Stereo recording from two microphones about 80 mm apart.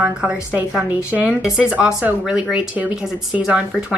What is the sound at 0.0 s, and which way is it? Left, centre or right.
Speech, centre.